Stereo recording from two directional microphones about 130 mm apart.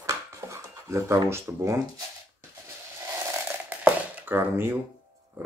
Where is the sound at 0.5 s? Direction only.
20° right (ahead or behind).